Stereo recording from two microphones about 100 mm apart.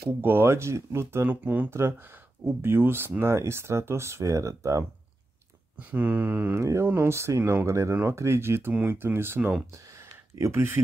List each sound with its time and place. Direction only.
0.2 s speech: 20° right (ahead or behind)
5.8 s speech: 20° right (ahead or behind)
9.8 s a sound: 35° right (ahead or behind)